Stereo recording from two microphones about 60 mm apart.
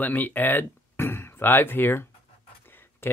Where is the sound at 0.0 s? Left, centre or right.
Left.